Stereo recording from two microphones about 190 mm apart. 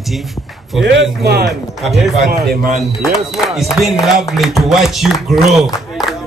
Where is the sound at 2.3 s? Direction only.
55° right (ahead or behind).